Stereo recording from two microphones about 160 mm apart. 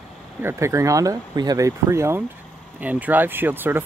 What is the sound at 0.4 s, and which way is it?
Speech, 15° right (ahead or behind).